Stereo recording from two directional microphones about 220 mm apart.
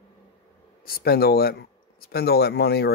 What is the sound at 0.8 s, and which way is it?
Speech, 45° left (ahead or behind).